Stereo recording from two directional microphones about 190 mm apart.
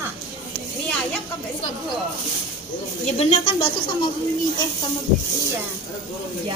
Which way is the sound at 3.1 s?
30° left (ahead or behind).